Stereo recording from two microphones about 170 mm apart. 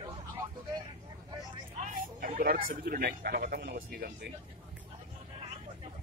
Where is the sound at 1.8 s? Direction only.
50° right (ahead or behind); by 4.3 s 70° right (ahead or behind).